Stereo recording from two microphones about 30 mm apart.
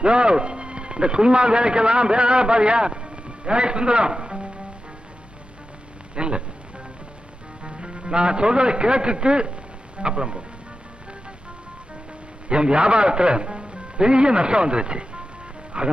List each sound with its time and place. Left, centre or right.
0.0 s speech: right
6.1 s speech: right
7.6 s a man's voice: right
12.4 s a man's voice: right